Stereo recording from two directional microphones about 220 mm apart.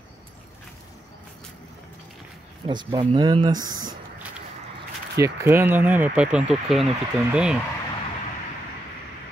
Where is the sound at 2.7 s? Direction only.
20° right (ahead or behind).